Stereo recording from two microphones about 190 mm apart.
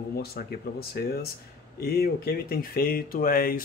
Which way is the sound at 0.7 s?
55° left (ahead or behind).